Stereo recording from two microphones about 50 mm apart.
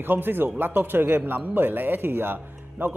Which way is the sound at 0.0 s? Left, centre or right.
Right.